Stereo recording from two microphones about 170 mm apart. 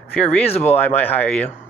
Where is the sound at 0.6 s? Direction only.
10° left (ahead or behind).